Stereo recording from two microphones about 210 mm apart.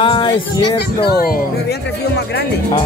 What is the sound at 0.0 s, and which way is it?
Music, 25° left (ahead or behind).